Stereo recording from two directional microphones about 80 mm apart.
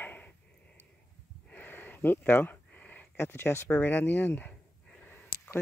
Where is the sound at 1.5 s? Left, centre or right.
Left.